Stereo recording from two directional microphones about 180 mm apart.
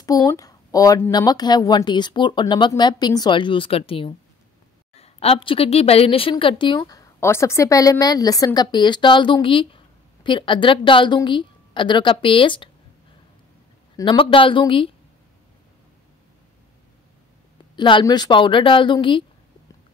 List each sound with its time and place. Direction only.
0.0 s a woman's voice: 20° left (ahead or behind)
13.9 s a woman's voice: 30° left (ahead or behind)
17.7 s a woman's voice: 25° left (ahead or behind)